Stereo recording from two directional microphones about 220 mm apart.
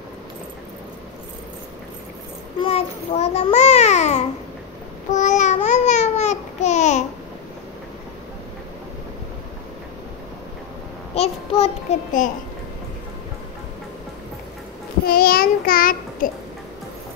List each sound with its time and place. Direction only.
2.6 s a child's voice: 25° left (ahead or behind)
5.1 s babbling: 35° left (ahead or behind)
11.1 s child singing: 25° left (ahead or behind)
15.0 s child singing: 45° left (ahead or behind)